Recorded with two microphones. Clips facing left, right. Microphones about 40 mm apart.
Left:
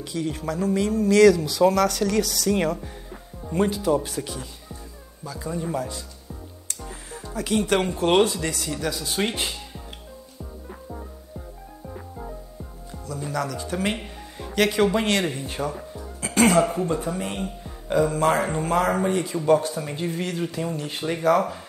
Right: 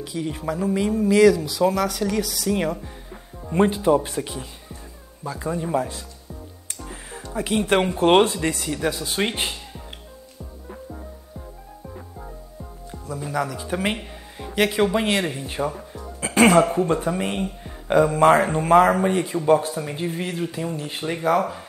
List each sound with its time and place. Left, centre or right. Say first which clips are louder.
0.0 s speech: even; centre
3.5 s speech: right 4 dB; right
6.9 s music: right 3 dB; centre
7.6 s speech: right 5 dB; right
13.2 s speech: right 2 dB; centre
16.2 s music: right 3 dB; right
16.7 s speech: right 4 dB; right; by 20.1 s centre
20.1 s speech: even; right
20.7 s speech: even; centre